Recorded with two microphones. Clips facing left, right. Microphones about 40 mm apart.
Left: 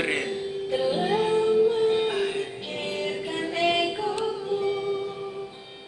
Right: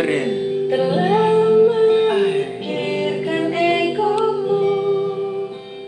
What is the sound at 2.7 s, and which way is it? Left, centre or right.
Music, right.